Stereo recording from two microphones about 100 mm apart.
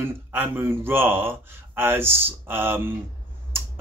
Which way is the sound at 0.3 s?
20° right (ahead or behind).